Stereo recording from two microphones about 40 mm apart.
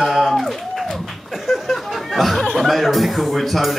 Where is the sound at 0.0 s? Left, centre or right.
Centre.